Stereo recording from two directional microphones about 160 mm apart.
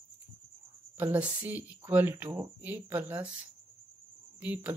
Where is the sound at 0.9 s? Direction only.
10° right (ahead or behind).